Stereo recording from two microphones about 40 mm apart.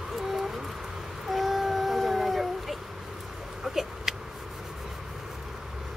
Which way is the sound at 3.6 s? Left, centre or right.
Centre.